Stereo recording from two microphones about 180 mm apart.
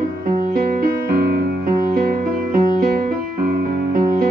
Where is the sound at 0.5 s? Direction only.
55° right (ahead or behind).